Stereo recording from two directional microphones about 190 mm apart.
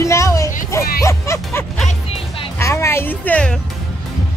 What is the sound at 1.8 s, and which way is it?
Music, 30° left (ahead or behind).